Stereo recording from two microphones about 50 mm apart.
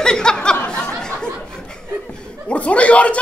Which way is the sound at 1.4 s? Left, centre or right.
Centre.